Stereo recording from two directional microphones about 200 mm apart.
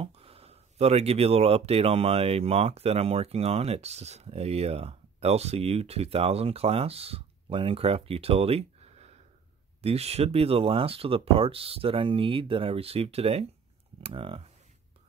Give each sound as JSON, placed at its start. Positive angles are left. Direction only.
{"t": 0.0, "sound": "speech", "side_deg": -30}